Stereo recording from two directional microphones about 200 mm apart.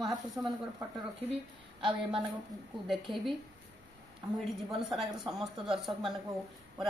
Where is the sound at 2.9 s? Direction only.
Centre (ahead or behind).